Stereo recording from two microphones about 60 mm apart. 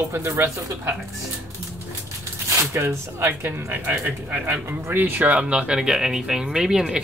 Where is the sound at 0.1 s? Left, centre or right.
Right.